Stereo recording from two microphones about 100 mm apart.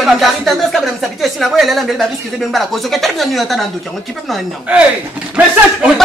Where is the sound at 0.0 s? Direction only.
Centre (ahead or behind).